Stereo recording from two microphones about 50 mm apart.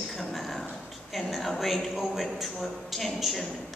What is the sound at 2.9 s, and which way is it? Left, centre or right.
Speech, centre.